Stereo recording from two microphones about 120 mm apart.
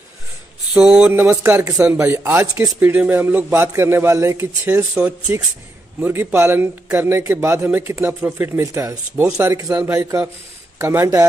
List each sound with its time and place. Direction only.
0.7 s a man's voice: 10° right (ahead or behind)
1.1 s a man's voice: 20° right (ahead or behind)
2.4 s speech: 30° right (ahead or behind)
2.8 s a man's voice: 15° right (ahead or behind)
4.9 s a man's voice: 10° right (ahead or behind)